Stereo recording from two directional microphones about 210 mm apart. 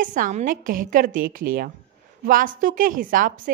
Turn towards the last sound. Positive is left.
turn(degrees=-40)  # may be behind; listen again after turning